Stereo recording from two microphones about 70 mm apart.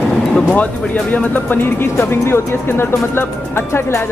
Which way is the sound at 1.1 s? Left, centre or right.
Left.